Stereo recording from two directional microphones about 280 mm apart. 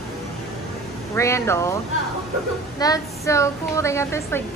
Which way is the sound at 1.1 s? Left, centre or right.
Centre.